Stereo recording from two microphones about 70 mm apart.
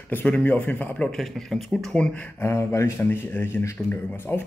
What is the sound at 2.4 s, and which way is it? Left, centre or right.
Speech, left.